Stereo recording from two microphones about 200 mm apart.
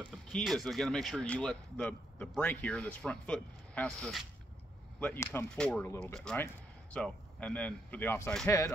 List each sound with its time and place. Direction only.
0.3 s speech: centre (ahead or behind)